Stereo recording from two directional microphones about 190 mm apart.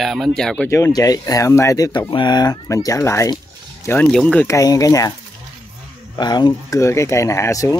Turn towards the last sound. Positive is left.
turn(degrees=15)  # may be behind; listen again after turning